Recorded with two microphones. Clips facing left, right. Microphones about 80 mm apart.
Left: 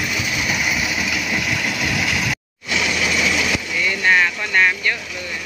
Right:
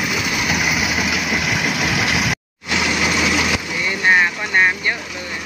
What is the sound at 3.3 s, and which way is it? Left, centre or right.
Vehicle, right.